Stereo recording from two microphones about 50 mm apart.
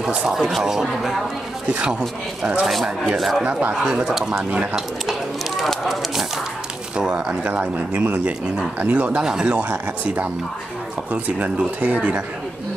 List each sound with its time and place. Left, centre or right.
0.3 s speech: centre
1.7 s speech: right
2.6 s speech: centre
3.4 s speech: right
3.8 s speech: centre
5.6 s a sound: centre
7.0 s speech: centre
7.4 s speech: right
9.2 s speech: centre; by 12.2 s right